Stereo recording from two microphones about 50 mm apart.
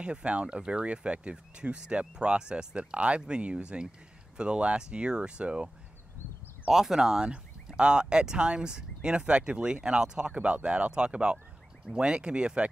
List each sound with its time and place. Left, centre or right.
0.0 s speech: right
6.7 s speech: centre